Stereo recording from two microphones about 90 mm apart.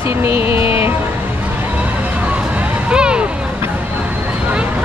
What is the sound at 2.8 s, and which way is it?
Vehicle, 10° right (ahead or behind).